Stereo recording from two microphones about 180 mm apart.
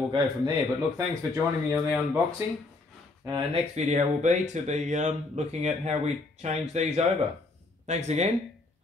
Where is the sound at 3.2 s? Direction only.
20° right (ahead or behind).